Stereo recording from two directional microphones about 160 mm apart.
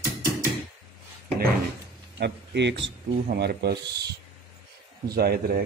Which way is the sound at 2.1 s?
90° right.